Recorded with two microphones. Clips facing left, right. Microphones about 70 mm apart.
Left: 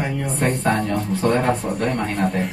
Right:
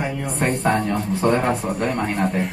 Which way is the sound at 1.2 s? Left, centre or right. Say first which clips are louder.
Even; centre.